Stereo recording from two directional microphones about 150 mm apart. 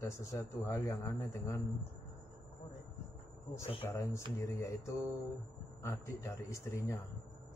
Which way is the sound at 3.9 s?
20° left (ahead or behind).